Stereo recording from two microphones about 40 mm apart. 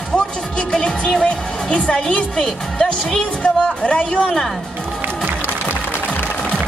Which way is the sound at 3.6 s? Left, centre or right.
Left.